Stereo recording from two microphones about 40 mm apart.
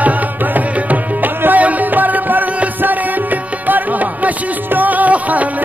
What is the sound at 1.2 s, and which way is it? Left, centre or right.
Music, right.